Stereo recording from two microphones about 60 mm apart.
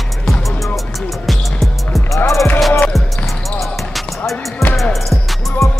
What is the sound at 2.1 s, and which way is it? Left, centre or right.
Music, left.